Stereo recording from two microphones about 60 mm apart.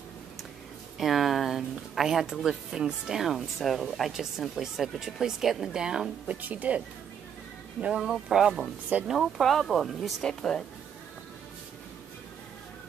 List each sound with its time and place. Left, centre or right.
0.9 s speech: centre
6.4 s speech: right
8.0 s speech: centre